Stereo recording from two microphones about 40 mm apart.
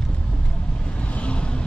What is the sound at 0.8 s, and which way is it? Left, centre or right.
Vehicle, left.